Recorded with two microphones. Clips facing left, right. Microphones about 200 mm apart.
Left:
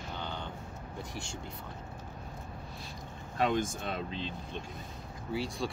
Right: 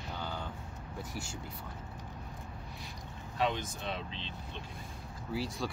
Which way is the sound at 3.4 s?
45° left (ahead or behind).